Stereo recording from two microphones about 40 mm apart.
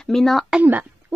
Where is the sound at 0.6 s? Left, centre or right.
Right.